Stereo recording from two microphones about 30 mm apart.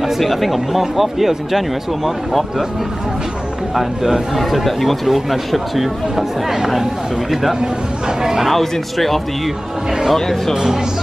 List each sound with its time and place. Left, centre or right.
0.2 s speech: centre
3.7 s speech: centre
8.5 s speech: centre
10.5 s speech: centre